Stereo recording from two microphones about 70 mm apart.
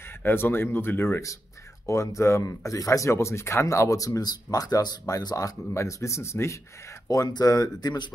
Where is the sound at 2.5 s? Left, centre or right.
Left.